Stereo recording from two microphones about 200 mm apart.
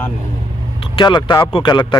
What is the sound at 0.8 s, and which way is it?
Speech, 25° left (ahead or behind).